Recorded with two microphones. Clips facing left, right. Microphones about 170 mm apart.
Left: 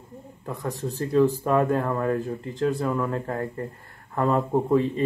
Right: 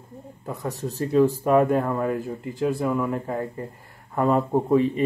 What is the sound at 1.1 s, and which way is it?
Speech, 15° right (ahead or behind).